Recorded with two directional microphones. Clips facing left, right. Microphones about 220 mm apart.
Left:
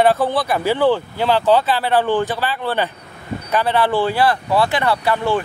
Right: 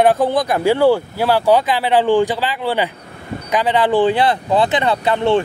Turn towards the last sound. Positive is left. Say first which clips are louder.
# right 3 dB
turn(degrees=-25)  # may be behind; listen again after turning